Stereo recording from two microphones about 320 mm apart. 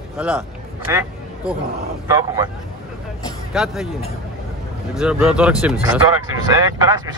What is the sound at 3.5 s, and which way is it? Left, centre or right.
Speech, centre.